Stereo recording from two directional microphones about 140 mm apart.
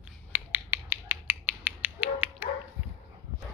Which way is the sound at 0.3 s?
15° right (ahead or behind).